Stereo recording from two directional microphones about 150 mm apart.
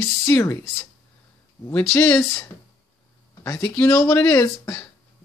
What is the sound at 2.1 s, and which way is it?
Speech, 20° left (ahead or behind).